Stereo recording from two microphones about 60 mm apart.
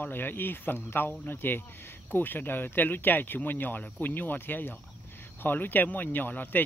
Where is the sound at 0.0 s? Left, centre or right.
Left.